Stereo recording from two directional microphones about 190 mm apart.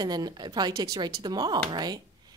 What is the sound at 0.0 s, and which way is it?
Speech, 20° right (ahead or behind).